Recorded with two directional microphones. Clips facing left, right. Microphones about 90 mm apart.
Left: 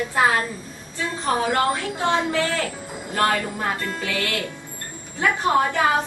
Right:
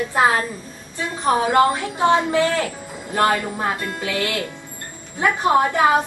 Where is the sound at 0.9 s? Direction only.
20° right (ahead or behind).